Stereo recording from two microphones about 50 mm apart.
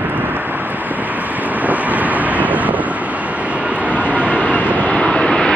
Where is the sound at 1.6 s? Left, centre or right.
Right.